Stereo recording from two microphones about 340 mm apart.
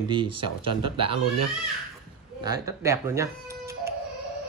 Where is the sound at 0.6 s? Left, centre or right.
Right.